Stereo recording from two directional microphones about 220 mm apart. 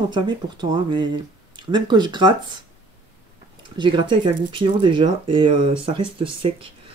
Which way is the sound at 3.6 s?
20° right (ahead or behind).